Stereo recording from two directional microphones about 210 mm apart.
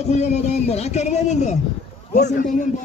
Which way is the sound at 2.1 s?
50° left (ahead or behind).